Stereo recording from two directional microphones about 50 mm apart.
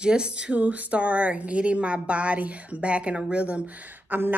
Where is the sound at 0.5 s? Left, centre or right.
Right.